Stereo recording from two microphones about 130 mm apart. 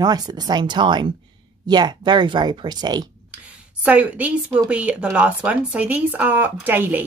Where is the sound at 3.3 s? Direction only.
10° right (ahead or behind).